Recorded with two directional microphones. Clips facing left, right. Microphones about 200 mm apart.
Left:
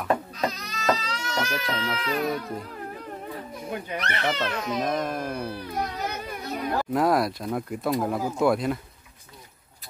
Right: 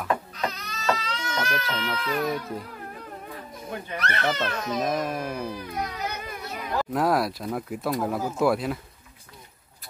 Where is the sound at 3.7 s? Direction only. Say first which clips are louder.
Even; 15° left (ahead or behind).